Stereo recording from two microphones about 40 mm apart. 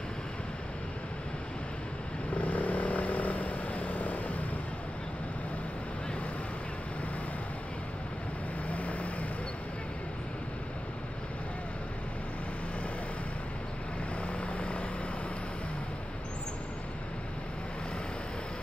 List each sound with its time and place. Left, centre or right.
2.3 s vehicle: left
8.6 s vehicle: left
14.2 s vehicle: left